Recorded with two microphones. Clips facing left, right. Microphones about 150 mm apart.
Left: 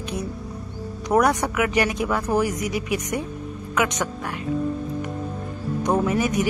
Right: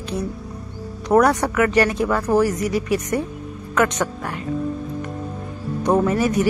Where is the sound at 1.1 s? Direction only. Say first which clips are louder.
Right 4 dB; 5° left (ahead or behind).